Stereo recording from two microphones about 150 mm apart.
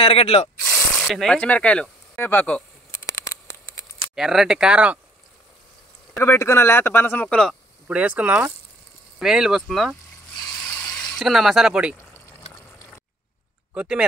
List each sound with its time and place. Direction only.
0.0 s speech: 40° left (ahead or behind)
0.7 s speech: centre (ahead or behind)
3.0 s a sound: 20° left (ahead or behind)
4.1 s speech: 5° right (ahead or behind)
6.1 s speech: 20° left (ahead or behind)
7.9 s speech: 10° right (ahead or behind)
10.7 s a sound: 10° left (ahead or behind); by 12.0 s 5° right (ahead or behind)
13.7 s speech: 5° right (ahead or behind)